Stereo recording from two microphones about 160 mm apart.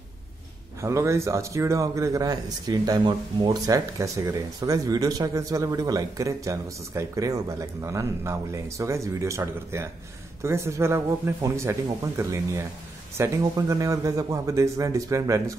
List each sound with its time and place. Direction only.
0.8 s speech: 20° right (ahead or behind)